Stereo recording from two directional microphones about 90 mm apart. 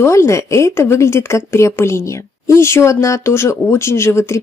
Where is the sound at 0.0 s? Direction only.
30° left (ahead or behind).